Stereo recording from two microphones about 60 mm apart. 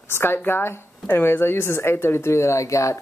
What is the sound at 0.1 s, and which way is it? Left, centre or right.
Speech, left.